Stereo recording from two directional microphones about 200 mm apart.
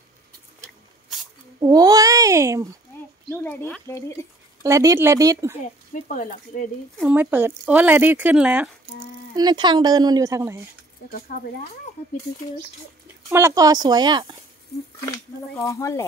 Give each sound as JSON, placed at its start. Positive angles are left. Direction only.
{"t": 1.6, "sound": "a child's voice", "side_deg": -20}
{"t": 3.3, "sound": "speech", "side_deg": 5}
{"t": 4.6, "sound": "speech", "side_deg": -15}
{"t": 5.9, "sound": "speech", "side_deg": 35}
{"t": 7.0, "sound": "speech", "side_deg": -10}
{"t": 9.3, "sound": "speech", "side_deg": -20}
{"t": 11.1, "sound": "speech", "side_deg": 50}
{"t": 13.3, "sound": "speech", "side_deg": -15}
{"t": 15.6, "sound": "speech", "side_deg": 15}